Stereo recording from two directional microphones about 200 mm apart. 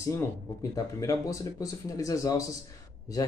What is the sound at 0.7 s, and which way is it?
Speech, 15° left (ahead or behind).